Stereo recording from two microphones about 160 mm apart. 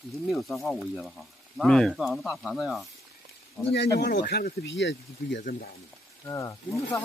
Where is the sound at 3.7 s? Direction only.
90° left.